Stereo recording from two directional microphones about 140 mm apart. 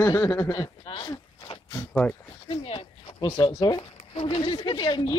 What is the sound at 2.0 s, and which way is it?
Speech, 10° left (ahead or behind).